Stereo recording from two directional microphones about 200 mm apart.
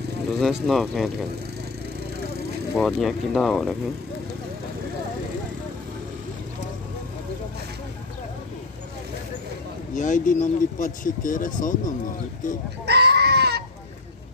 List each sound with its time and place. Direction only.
0.4 s speech: centre (ahead or behind)
2.7 s speech: centre (ahead or behind)
9.9 s speech: 40° left (ahead or behind)
12.8 s goat: 55° right (ahead or behind)